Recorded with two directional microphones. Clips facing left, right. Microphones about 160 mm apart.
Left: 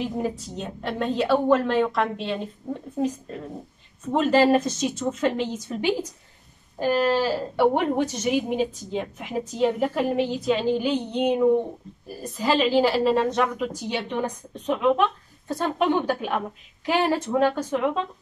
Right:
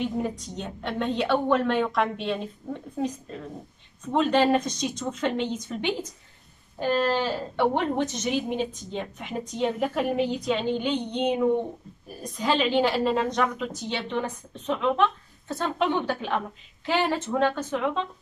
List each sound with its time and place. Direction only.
0.0 s a woman's voice: 5° left (ahead or behind)
4.0 s a woman's voice: 5° left (ahead or behind)